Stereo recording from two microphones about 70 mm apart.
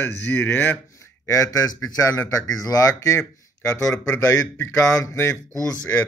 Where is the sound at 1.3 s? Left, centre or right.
Left.